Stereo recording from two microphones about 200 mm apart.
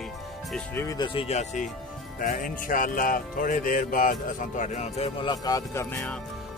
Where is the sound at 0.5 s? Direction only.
10° left (ahead or behind).